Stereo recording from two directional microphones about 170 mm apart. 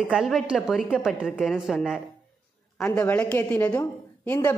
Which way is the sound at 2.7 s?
10° left (ahead or behind).